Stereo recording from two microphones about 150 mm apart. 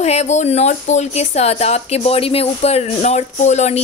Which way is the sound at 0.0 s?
45° left (ahead or behind).